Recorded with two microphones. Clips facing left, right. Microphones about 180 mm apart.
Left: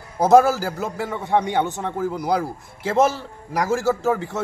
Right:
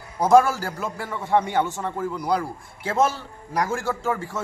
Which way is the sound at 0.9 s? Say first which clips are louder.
Even; 20° left (ahead or behind).